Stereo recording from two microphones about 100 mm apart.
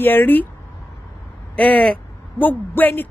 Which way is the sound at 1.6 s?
15° left (ahead or behind).